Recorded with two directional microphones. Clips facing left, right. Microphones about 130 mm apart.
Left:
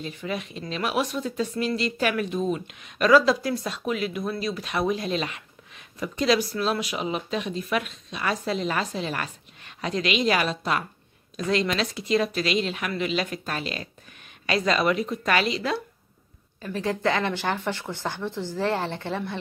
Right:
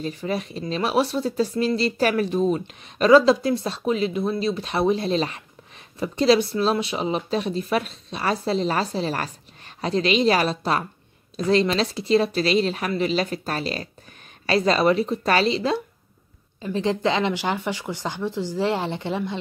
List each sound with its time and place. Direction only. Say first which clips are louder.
0.0 s speech: right 5 dB; 35° right (ahead or behind); by 19.3 s 15° right (ahead or behind)